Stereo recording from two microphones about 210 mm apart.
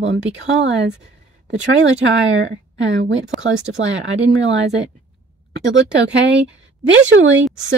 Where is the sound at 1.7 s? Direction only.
60° right (ahead or behind).